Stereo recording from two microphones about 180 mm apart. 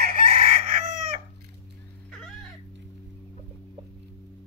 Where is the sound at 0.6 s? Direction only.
45° right (ahead or behind).